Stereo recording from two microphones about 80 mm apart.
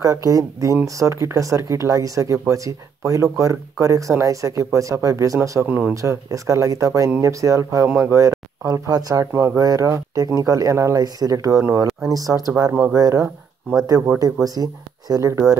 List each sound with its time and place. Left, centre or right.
0.0 s speech: right
5.7 s speech: centre
5.9 s speech: right
14.2 s speech: right